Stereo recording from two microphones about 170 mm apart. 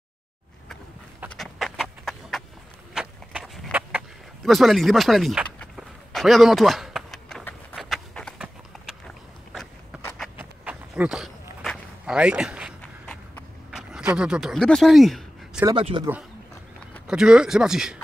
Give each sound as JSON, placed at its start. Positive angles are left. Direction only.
{"t": 1.3, "sound": "a sound", "side_deg": 0}
{"t": 11.6, "sound": "walk", "side_deg": 0}
{"t": 12.8, "sound": "walk", "side_deg": 5}
{"t": 13.7, "sound": "a sound", "side_deg": -5}
{"t": 15.7, "sound": "speech", "side_deg": -30}
{"t": 17.1, "sound": "speech", "side_deg": -5}